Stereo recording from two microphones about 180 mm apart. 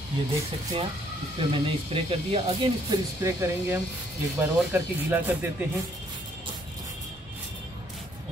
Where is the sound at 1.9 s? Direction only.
30° right (ahead or behind).